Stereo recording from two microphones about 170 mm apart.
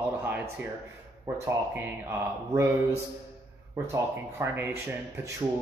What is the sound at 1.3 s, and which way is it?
Speech, 20° right (ahead or behind).